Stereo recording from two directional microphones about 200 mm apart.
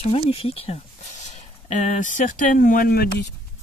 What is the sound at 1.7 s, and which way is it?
Speech, 40° left (ahead or behind).